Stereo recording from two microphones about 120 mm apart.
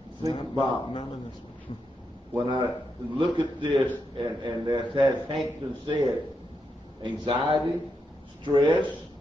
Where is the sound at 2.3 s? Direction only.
40° right (ahead or behind).